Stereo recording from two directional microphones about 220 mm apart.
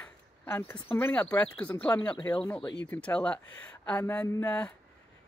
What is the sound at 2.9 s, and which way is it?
Speech, 5° left (ahead or behind).